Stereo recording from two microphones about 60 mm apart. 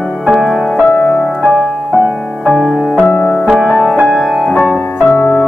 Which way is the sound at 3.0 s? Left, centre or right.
Centre.